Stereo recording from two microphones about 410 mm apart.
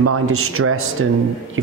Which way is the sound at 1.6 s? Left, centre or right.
Right.